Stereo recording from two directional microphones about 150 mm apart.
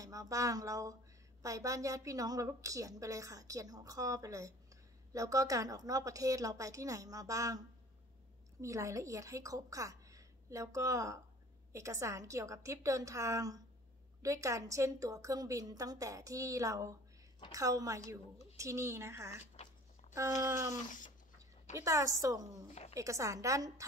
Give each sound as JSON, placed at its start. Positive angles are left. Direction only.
{"t": 0.0, "sound": "a woman's voice", "side_deg": -20}
{"t": 19.5, "sound": "a sound", "side_deg": 50}
{"t": 20.2, "sound": "a woman's voice", "side_deg": -20}
{"t": 21.8, "sound": "a woman's voice", "side_deg": -20}